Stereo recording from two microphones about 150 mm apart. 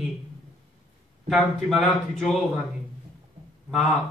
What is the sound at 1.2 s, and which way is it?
A man's voice, centre (ahead or behind).